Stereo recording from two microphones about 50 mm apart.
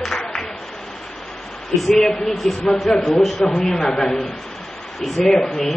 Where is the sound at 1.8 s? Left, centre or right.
Centre.